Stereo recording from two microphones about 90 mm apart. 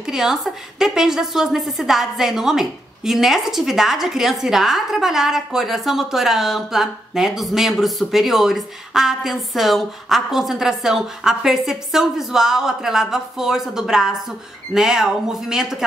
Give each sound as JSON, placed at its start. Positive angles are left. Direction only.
{"t": 0.0, "sound": "a woman's voice", "side_deg": -5}